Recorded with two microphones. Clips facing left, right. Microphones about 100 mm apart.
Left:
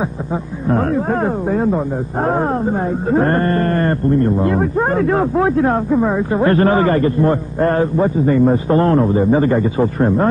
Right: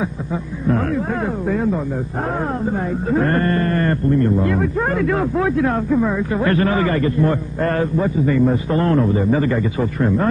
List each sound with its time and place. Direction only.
0.7 s speech: 35° left (ahead or behind)